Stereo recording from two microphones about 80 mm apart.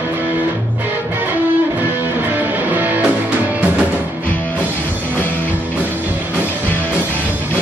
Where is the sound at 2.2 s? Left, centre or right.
Right.